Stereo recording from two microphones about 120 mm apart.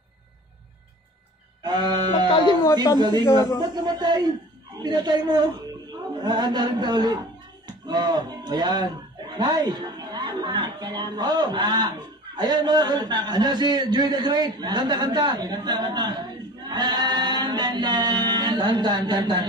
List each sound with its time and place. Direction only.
1.6 s music: 35° right (ahead or behind)
2.6 s speech: 25° left (ahead or behind)
3.0 s a man's voice: 35° right (ahead or behind)